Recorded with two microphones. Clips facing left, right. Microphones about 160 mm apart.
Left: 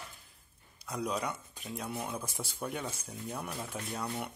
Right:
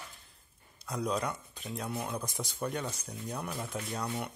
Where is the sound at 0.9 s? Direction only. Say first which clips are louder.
Right 2 dB; 5° left (ahead or behind).